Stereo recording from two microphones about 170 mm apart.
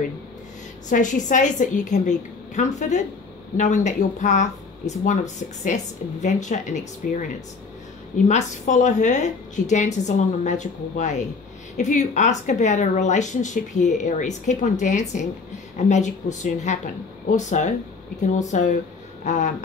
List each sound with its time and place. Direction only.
0.8 s a woman's voice: 50° left (ahead or behind)
8.3 s a woman's voice: 45° left (ahead or behind)